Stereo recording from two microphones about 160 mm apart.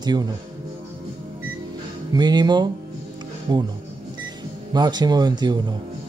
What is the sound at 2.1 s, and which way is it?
Speech, 25° right (ahead or behind).